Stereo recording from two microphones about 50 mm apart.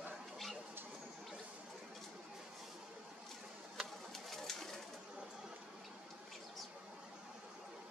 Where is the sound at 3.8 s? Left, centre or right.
Centre.